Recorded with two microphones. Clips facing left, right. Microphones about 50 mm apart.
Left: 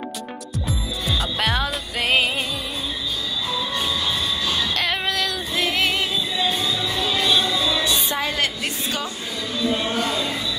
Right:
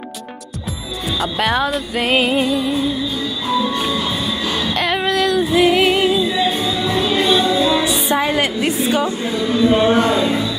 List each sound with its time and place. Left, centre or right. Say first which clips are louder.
1.2 s music: right 7 dB; centre
4.7 s music: right 6 dB; centre
6.8 s music: right 6 dB; right
8.1 s a woman's voice: right 7 dB; centre
9.3 s music: right 9 dB; right